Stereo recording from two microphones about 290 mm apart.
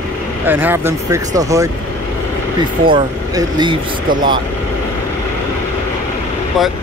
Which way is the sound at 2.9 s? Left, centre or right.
Centre.